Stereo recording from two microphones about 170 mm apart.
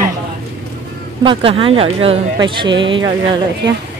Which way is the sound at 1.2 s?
30° right (ahead or behind).